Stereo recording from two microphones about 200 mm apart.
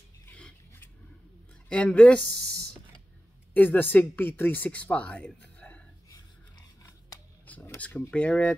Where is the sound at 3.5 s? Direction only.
10° left (ahead or behind).